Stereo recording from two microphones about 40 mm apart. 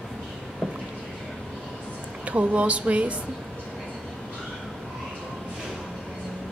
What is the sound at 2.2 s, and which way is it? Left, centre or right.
Speech, right.